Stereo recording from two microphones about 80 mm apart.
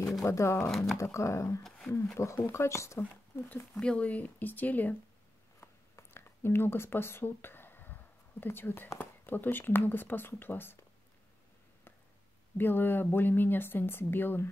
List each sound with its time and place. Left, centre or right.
0.2 s speech: left
0.6 s speech: centre
0.9 s speech: left
3.7 s speech: centre
5.6 s a sound: left
5.9 s speech: left
12.5 s speech: left